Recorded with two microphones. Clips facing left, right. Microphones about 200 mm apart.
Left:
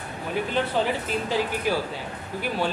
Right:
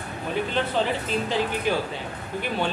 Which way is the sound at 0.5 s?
10° left (ahead or behind).